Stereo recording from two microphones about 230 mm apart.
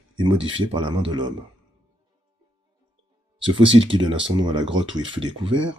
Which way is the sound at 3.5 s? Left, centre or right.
Right.